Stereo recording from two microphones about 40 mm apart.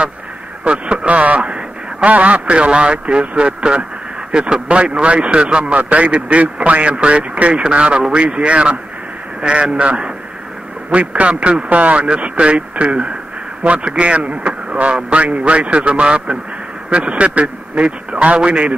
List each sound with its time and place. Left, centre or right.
0.7 s a man's voice: right